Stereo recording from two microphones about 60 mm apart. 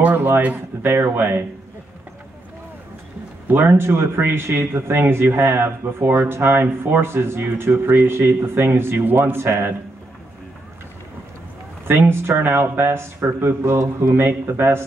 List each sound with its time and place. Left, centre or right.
0.0 s a sound: right
1.1 s speech: right
3.4 s speech: right
11.9 s speech: right